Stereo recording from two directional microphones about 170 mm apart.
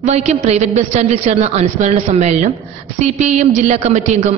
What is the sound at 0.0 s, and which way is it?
A man's voice, 40° right (ahead or behind).